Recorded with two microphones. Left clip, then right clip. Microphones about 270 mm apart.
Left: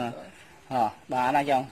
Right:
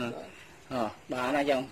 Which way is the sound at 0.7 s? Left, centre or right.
Left.